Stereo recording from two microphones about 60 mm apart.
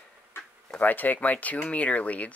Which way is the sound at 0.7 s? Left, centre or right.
Left.